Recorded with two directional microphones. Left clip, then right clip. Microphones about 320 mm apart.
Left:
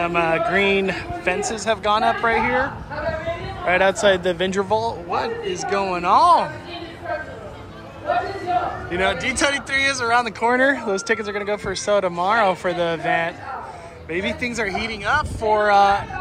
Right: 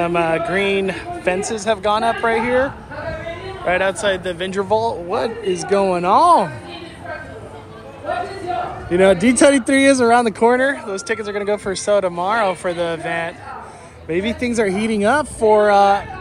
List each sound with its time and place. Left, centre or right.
0.0 s speech: centre
9.2 s speech: centre